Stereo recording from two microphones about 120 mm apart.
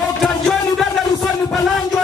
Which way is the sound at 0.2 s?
Centre (ahead or behind).